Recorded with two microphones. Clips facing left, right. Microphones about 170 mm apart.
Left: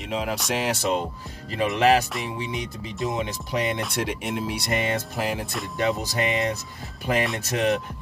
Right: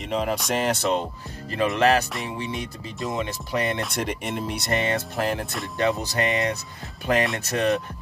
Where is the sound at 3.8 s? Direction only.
5° left (ahead or behind).